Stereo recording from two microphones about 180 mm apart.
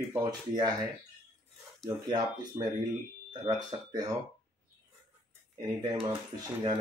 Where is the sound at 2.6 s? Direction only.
20° right (ahead or behind).